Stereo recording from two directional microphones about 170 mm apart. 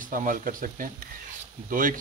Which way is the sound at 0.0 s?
50° right (ahead or behind).